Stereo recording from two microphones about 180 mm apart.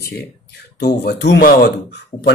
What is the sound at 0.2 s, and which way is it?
Speech, 60° left (ahead or behind).